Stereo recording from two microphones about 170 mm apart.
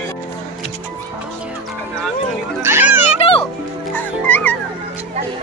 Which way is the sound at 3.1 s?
35° left (ahead or behind).